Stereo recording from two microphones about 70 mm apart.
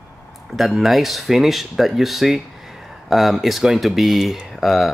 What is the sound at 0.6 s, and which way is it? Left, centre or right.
Speech, centre.